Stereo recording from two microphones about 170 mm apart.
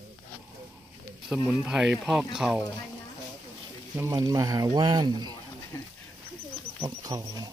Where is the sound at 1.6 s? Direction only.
5° right (ahead or behind).